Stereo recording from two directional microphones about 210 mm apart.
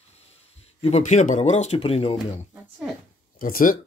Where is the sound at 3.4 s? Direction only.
40° left (ahead or behind).